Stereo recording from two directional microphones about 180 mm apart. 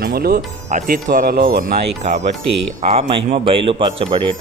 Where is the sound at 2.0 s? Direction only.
40° right (ahead or behind).